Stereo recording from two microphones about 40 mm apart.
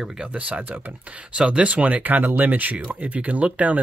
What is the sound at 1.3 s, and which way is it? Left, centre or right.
Speech, right.